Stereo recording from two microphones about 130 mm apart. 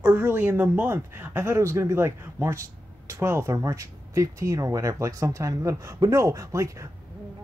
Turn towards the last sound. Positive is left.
turn(degrees=-25)  # may be behind; listen again after turning